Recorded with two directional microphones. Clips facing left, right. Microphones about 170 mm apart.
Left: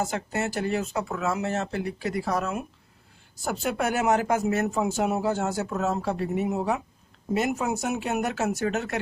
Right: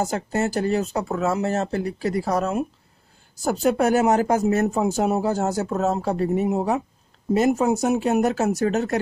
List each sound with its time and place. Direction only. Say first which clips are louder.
0.0 s speech: right 5 dB; 40° right (ahead or behind)